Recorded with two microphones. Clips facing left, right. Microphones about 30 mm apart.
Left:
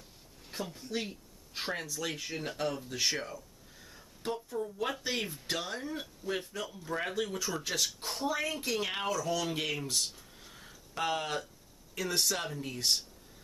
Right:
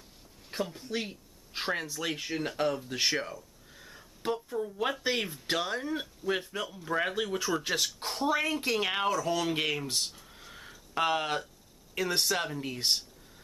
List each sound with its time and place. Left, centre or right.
0.5 s speech: right
2.9 s speech: right
8.0 s a sound: right
8.5 s speech: right